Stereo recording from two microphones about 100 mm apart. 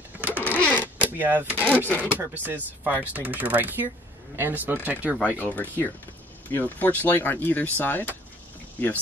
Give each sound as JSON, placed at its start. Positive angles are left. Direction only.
{"t": 0.4, "sound": "sewing machine", "side_deg": 15}
{"t": 1.0, "sound": "speech", "side_deg": -20}
{"t": 1.9, "sound": "speech", "side_deg": 15}
{"t": 2.1, "sound": "speech", "side_deg": -20}
{"t": 5.4, "sound": "speech", "side_deg": 20}